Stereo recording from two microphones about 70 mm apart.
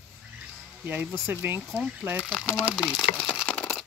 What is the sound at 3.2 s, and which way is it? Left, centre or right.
Crumpling, left.